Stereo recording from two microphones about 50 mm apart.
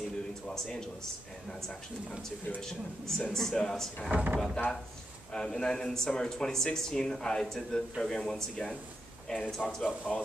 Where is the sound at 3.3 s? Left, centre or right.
Centre.